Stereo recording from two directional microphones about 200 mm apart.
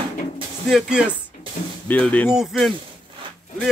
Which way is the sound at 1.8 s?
5° left (ahead or behind).